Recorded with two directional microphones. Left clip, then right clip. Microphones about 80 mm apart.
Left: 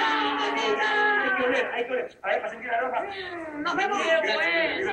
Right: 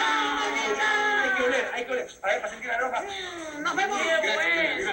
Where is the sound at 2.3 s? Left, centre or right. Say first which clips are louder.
Even; right.